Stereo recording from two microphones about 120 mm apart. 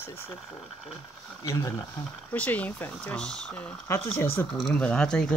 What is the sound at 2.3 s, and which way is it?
Speech, 10° left (ahead or behind).